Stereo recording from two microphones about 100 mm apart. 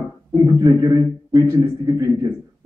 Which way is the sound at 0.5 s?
35° right (ahead or behind).